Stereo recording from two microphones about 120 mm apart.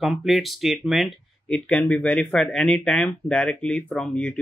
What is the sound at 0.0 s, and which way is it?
Speech, centre (ahead or behind).